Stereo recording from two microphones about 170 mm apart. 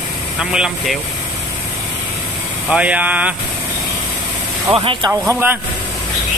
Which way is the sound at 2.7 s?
10° right (ahead or behind).